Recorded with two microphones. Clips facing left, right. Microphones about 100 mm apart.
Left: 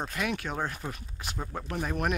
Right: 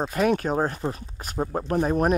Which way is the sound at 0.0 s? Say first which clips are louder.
Right 10 dB; 40° right (ahead or behind).